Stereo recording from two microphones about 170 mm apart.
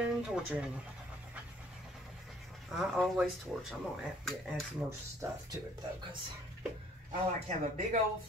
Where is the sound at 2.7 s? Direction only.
Centre (ahead or behind).